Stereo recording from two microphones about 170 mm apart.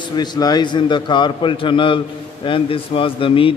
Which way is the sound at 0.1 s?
25° left (ahead or behind).